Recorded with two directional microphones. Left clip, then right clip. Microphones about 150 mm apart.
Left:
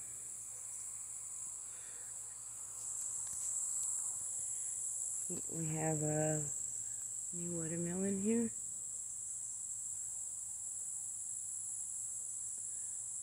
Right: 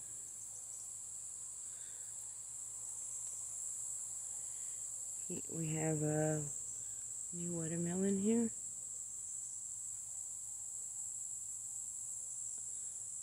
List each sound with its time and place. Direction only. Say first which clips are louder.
5.6 s cricket: even; 25° right (ahead or behind)